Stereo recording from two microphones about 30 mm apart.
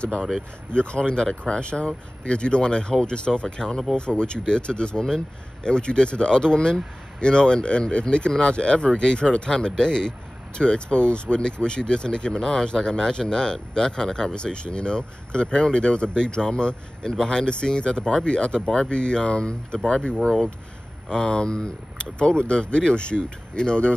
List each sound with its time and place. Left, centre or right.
0.7 s speech: left